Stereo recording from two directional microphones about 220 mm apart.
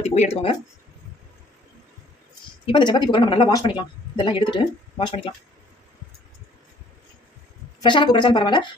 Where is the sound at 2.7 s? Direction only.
20° left (ahead or behind).